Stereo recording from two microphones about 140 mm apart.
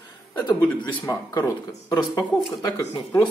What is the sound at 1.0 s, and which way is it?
Speech, 20° left (ahead or behind).